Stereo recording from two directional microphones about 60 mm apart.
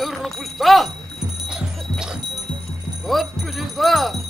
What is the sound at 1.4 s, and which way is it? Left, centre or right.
Music, centre.